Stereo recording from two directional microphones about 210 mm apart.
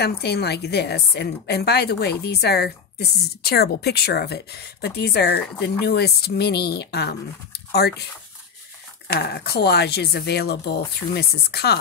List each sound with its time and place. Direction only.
0.0 s a woman's voice: 50° left (ahead or behind)
9.0 s a woman's voice: 50° left (ahead or behind)